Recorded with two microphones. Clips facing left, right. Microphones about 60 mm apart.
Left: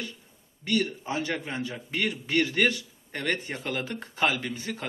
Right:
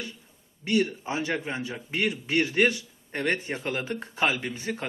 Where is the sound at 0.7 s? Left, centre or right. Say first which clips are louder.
Right 2 dB; centre.